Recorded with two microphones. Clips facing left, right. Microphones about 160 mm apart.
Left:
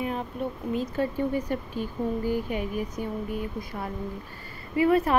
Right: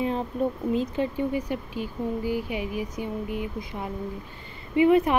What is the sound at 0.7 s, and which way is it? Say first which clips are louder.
Speech: right 1 dB; 15° right (ahead or behind).